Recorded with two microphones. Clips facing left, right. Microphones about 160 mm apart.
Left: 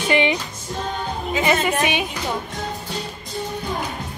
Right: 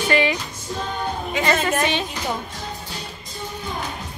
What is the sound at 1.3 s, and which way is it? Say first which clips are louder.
Speech: left 2 dB; 10° left (ahead or behind).